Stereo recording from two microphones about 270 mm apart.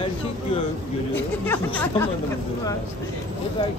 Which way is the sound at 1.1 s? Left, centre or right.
Centre.